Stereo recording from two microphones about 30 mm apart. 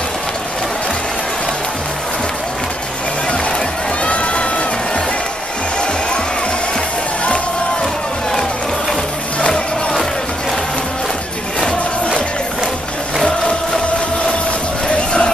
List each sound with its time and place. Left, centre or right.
4.0 s music: left
7.8 s music: centre
14.9 s music: left